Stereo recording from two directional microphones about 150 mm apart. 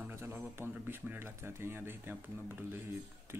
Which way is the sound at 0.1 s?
15° right (ahead or behind).